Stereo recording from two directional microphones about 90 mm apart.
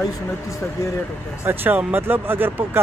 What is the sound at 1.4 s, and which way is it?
Speech, 20° right (ahead or behind).